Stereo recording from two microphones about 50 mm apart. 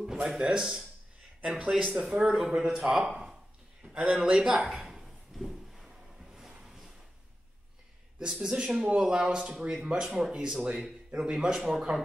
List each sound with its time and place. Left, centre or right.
0.0 s speech: centre
2.0 s speech: centre
3.8 s speech: right
4.8 s drawer open or close: centre
8.2 s speech: centre